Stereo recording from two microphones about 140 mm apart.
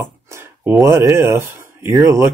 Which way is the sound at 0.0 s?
15° right (ahead or behind).